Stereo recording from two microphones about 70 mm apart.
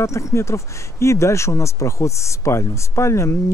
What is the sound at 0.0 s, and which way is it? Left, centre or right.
Speech, left.